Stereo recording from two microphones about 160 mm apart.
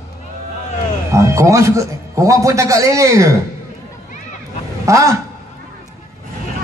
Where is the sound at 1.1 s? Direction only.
20° right (ahead or behind).